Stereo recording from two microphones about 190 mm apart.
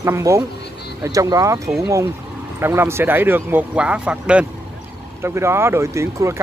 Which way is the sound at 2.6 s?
10° right (ahead or behind).